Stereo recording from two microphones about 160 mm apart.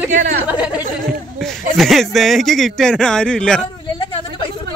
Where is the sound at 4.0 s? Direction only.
30° left (ahead or behind).